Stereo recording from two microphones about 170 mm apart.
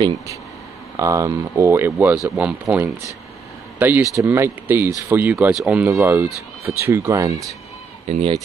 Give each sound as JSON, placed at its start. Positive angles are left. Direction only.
{"t": 0.9, "sound": "speech", "side_deg": -20}
{"t": 8.1, "sound": "speech", "side_deg": -35}